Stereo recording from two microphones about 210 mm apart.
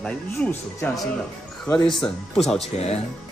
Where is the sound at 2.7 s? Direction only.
30° left (ahead or behind).